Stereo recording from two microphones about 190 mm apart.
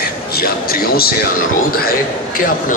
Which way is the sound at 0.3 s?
55° left (ahead or behind).